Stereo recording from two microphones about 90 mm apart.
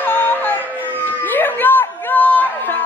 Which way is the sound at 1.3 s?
20° left (ahead or behind).